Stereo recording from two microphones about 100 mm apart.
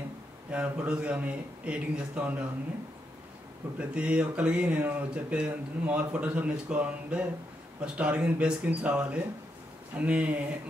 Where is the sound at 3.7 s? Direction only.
10° right (ahead or behind).